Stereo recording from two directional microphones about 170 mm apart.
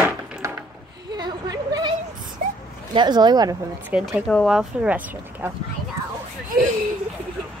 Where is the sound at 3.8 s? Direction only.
10° right (ahead or behind).